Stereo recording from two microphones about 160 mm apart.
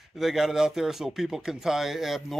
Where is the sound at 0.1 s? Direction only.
Centre (ahead or behind).